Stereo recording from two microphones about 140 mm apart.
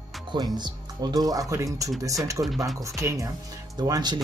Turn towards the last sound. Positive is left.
turn(degrees=-30)  # may be behind; listen again after turning